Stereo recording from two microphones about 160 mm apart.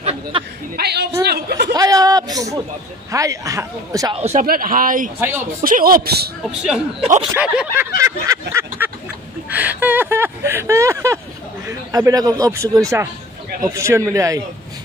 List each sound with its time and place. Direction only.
0.3 s speech: 30° right (ahead or behind)
0.7 s a woman's voice: 90° right
1.2 s a sound: 90° right
1.7 s a sound: 20° right (ahead or behind)
3.1 s a man's voice: 20° right (ahead or behind)
4.1 s speech: 40° right (ahead or behind)
4.5 s speech: 60° right (ahead or behind); by 6.3 s 80° right
6.6 s speech: 5° right (ahead or behind)
8.0 s a sound: 20° right (ahead or behind)
9.5 s a man's voice: 10° right (ahead or behind)